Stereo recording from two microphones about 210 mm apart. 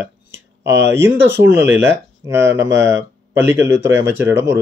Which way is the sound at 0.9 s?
10° right (ahead or behind).